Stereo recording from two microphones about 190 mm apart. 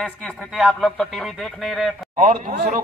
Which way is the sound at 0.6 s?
Centre (ahead or behind).